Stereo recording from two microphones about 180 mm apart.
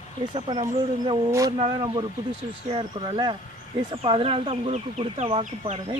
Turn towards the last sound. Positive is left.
turn(degrees=-35)  # may be behind; listen again after turning